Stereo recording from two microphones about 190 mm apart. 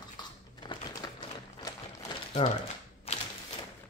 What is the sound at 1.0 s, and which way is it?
Typewriter, 20° left (ahead or behind).